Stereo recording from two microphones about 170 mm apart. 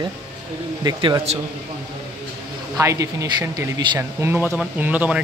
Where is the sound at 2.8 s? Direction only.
20° right (ahead or behind).